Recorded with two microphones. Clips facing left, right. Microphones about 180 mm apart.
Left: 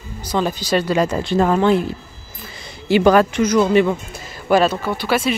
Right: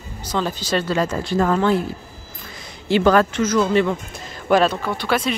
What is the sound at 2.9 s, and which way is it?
Speech, 10° left (ahead or behind).